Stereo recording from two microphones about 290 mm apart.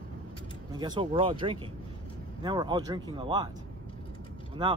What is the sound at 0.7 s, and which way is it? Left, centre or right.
Speech, centre.